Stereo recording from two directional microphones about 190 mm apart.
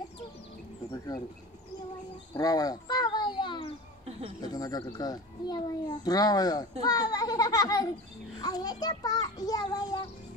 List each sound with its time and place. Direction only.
2.3 s cat: 20° left (ahead or behind)
4.4 s a child's voice: 20° left (ahead or behind)